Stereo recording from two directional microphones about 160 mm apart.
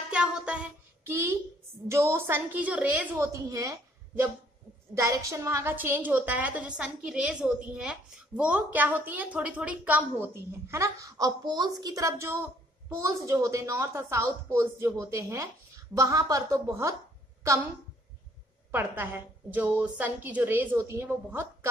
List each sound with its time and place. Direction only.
0.1 s child singing: 5° right (ahead or behind)
1.9 s a woman's voice: 15° right (ahead or behind)
18.7 s a woman's voice: 15° right (ahead or behind)